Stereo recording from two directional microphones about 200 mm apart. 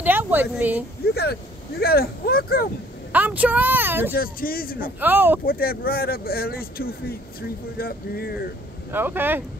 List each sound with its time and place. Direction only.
0.0 s a sound: 10° right (ahead or behind)
1.1 s speech: 55° left (ahead or behind)
3.1 s speech: 10° right (ahead or behind)
4.1 s speech: 45° left (ahead or behind)
5.0 s speech: 10° right (ahead or behind)
5.4 s speech: 50° left (ahead or behind)
8.9 s speech: 10° right (ahead or behind)